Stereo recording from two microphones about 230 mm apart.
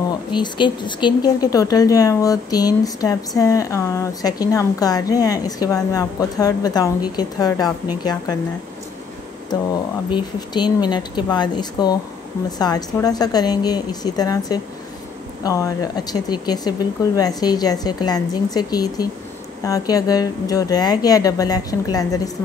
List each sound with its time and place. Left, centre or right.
0.3 s speech: centre
10.1 s speech: centre